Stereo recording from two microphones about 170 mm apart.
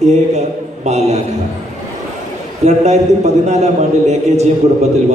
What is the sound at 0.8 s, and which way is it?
Speech, 40° right (ahead or behind).